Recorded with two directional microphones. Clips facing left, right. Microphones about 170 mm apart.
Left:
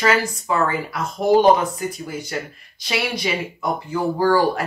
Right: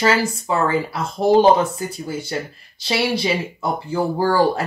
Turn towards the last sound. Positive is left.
turn(degrees=-30)  # may be behind; listen again after turning